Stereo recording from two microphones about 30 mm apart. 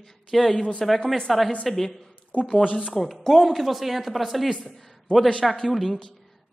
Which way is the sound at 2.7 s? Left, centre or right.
Left.